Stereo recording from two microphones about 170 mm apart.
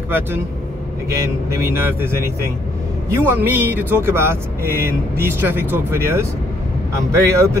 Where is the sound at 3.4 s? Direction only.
10° right (ahead or behind).